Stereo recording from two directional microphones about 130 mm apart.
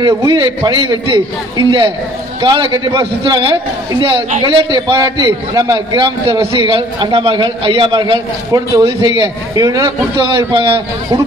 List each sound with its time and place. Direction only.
0.3 s a man's voice: 35° right (ahead or behind)
6.7 s a man's voice: 40° right (ahead or behind)